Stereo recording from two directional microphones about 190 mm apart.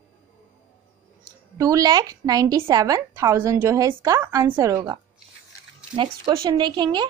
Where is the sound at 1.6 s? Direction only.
20° right (ahead or behind).